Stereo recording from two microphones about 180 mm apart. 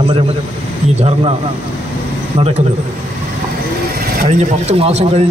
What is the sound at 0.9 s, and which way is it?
Speech, 35° right (ahead or behind).